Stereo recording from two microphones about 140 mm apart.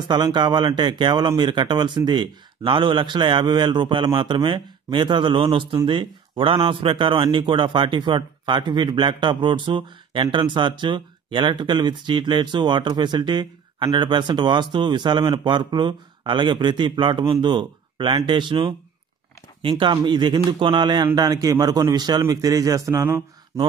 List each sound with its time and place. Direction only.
0.1 s a man's voice: 30° right (ahead or behind)